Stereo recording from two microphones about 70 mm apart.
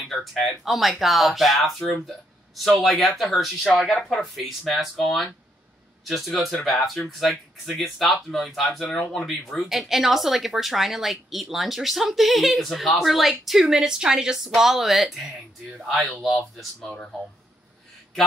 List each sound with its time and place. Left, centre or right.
0.0 s speech: centre
2.0 s a sound: centre
2.8 s speech: centre